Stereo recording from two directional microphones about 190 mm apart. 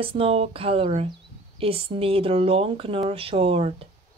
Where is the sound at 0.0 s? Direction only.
30° right (ahead or behind).